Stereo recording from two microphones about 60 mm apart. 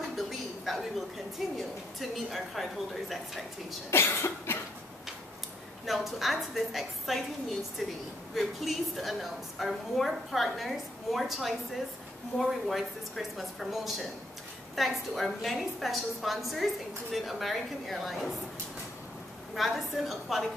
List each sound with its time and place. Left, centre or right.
0.1 s a sound: centre
1.6 s a woman's voice: centre
3.9 s cough: left
5.9 s a woman's voice: centre
19.5 s a woman's voice: centre